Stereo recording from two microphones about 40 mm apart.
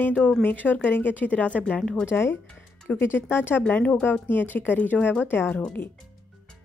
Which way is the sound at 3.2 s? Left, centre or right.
Left.